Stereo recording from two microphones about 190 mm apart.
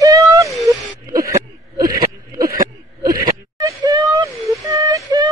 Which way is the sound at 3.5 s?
20° right (ahead or behind).